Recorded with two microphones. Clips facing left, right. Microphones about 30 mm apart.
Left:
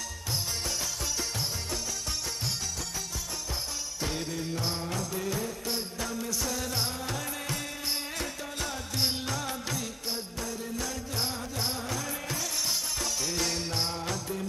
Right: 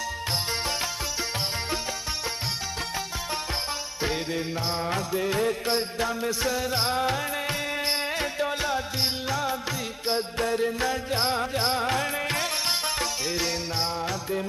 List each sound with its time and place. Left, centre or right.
4.0 s music: right
4.8 s music: right
5.4 s music: right
10.0 s music: right
13.3 s music: centre